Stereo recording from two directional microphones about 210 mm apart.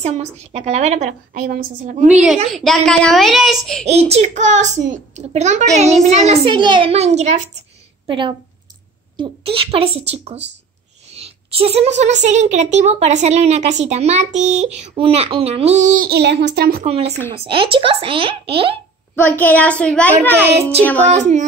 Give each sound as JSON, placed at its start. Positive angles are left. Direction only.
{"t": 0.0, "sound": "a child's voice", "side_deg": -30}
{"t": 2.5, "sound": "a child's voice", "side_deg": 0}
{"t": 3.8, "sound": "a child's voice", "side_deg": -30}
{"t": 16.8, "sound": "a woman's voice", "side_deg": -30}
{"t": 19.1, "sound": "a child's voice", "side_deg": 10}
{"t": 21.1, "sound": "a child's voice", "side_deg": -35}